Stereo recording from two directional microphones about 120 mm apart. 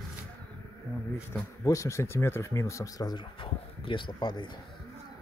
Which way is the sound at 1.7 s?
25° left (ahead or behind).